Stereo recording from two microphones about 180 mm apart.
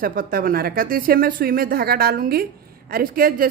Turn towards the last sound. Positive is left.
turn(degrees=-55)  # may be behind; listen again after turning